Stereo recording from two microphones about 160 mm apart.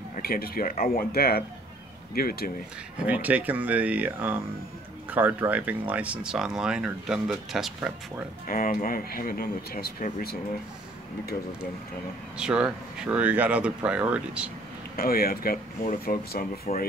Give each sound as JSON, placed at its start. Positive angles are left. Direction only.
{"t": 0.1, "sound": "a man's voice", "side_deg": 70}
{"t": 3.1, "sound": "speech", "side_deg": -10}
{"t": 8.5, "sound": "speech", "side_deg": 60}
{"t": 12.4, "sound": "speech", "side_deg": -5}
{"t": 15.0, "sound": "a man's voice", "side_deg": 70}
{"t": 15.8, "sound": "speech", "side_deg": 55}